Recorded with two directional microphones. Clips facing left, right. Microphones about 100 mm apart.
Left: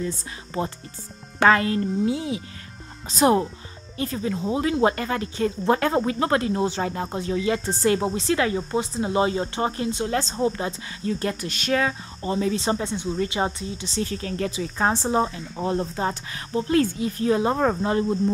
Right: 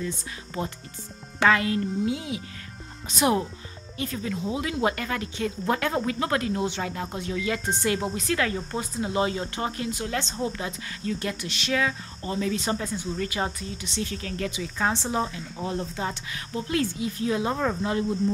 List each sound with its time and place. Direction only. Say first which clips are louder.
1.4 s speech: left 3 dB; 40° left (ahead or behind)
12.2 s speech: left 4 dB; 30° left (ahead or behind)
16.8 s speech: left 4 dB; 45° left (ahead or behind)